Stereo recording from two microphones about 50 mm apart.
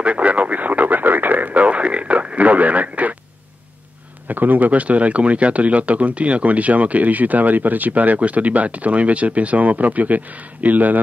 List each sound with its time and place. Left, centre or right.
0.0 s radio: right
4.3 s speech: right